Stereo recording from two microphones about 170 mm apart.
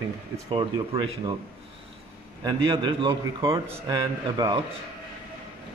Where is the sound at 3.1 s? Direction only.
20° right (ahead or behind).